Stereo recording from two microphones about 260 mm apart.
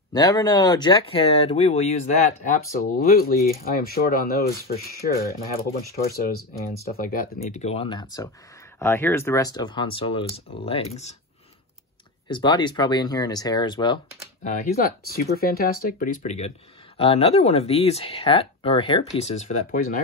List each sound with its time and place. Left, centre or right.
0.1 s speech: centre
12.3 s speech: centre
14.4 s speech: left